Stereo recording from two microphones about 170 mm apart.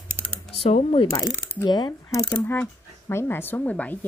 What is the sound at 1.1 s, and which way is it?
Speech, 15° left (ahead or behind).